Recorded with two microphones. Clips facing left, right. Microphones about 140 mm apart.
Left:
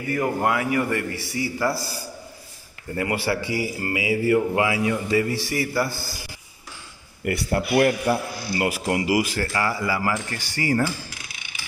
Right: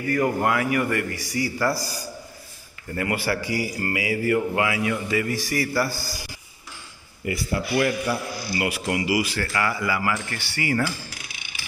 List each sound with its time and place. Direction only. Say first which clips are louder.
0.1 s a man's voice: right 1 dB; 20° left (ahead or behind)
3.0 s a man's voice: left 1 dB; 25° left (ahead or behind)
7.2 s speech: left 3 dB; 60° left (ahead or behind)
7.7 s a man's voice: left 4 dB; 50° left (ahead or behind)
9.5 s speech: left 1 dB; 35° left (ahead or behind)